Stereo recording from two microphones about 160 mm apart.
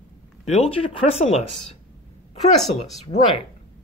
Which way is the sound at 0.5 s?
40° left (ahead or behind).